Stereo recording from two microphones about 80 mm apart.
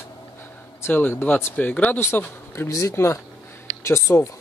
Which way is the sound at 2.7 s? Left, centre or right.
Left.